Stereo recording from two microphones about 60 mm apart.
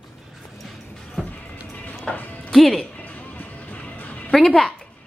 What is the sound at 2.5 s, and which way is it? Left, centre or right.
Speech, centre.